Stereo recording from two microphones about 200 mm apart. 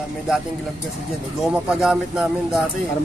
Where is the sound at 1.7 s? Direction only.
5° right (ahead or behind).